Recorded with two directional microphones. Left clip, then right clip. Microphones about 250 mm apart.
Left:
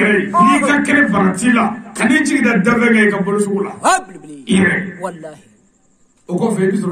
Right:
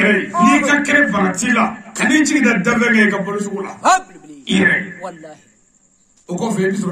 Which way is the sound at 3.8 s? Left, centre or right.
Left.